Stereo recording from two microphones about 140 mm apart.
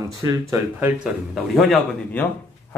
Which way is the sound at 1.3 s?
Centre (ahead or behind).